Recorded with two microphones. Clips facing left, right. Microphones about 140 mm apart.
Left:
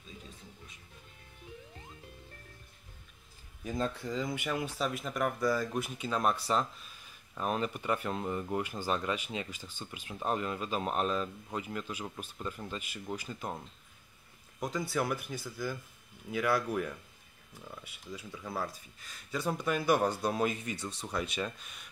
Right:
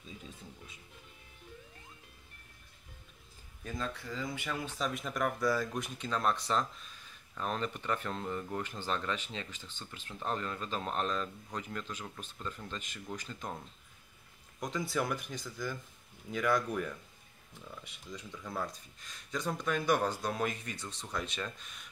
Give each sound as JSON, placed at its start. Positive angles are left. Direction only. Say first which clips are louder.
{"t": 3.7, "sound": "speech", "louder": "left 5 dB", "side_deg": 35}
{"t": 4.1, "sound": "speech", "louder": "left 4 dB", "side_deg": 15}
{"t": 14.6, "sound": "speech", "louder": "left 1 dB", "side_deg": 0}